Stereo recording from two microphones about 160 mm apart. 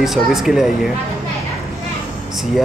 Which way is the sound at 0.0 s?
Centre (ahead or behind).